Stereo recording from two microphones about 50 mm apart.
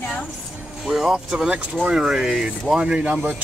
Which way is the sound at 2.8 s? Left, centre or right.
Right.